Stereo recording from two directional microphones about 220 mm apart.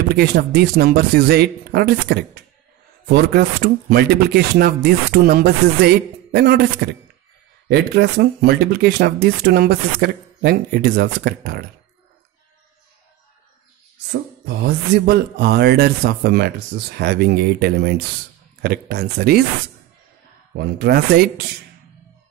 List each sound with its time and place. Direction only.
0.1 s speech: 45° right (ahead or behind)
15.0 s speech: 45° right (ahead or behind)
20.5 s speech: 45° right (ahead or behind)